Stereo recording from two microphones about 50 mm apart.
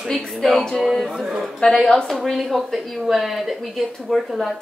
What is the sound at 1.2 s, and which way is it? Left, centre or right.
Speech, centre.